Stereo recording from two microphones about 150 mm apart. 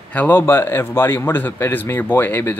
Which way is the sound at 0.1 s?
10° left (ahead or behind).